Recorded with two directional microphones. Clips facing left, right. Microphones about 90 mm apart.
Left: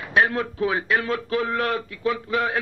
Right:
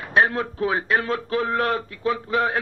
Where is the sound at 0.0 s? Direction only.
35° right (ahead or behind).